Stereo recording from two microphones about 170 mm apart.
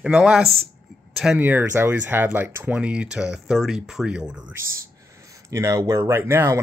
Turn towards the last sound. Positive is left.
turn(degrees=-15)  # may be behind; listen again after turning